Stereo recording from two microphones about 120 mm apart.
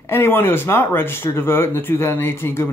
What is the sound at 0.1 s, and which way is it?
Speech, 20° left (ahead or behind).